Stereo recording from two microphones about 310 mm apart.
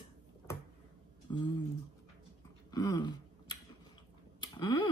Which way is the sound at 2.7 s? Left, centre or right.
Centre.